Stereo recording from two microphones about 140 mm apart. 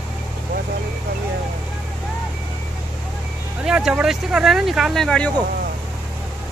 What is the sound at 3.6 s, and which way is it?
Speech, 5° right (ahead or behind).